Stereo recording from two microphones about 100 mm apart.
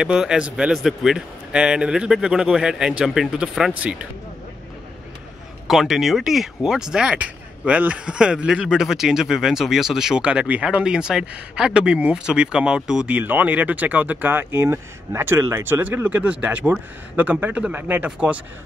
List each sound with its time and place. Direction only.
0.0 s speech: 5° right (ahead or behind)
5.7 s speech: centre (ahead or behind)